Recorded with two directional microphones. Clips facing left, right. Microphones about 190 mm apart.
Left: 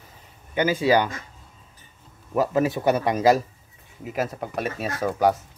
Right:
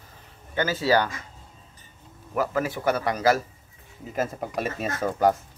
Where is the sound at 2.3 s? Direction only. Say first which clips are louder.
Left 4 dB; 20° left (ahead or behind).